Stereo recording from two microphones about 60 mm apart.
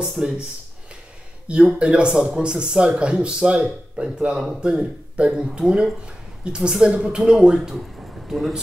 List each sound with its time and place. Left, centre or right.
0.0 s speech: centre
1.8 s a man's voice: centre